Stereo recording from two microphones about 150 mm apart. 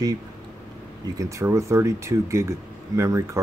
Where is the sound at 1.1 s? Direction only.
20° right (ahead or behind).